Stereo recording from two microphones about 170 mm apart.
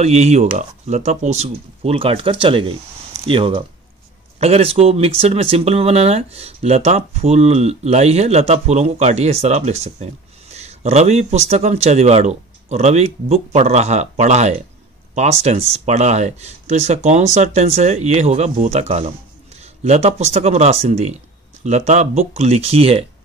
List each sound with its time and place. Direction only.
0.0 s speech: 40° right (ahead or behind)